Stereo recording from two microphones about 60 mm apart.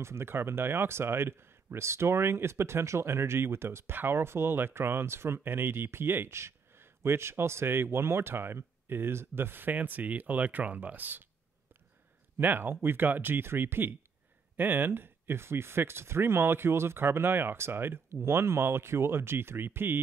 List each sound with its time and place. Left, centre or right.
0.0 s speech: right
12.4 s speech: right